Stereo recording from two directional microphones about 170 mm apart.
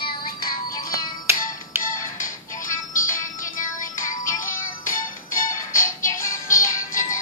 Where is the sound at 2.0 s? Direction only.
50° left (ahead or behind).